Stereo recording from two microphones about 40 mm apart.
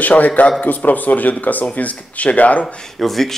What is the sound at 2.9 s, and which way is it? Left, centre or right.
Speech, centre.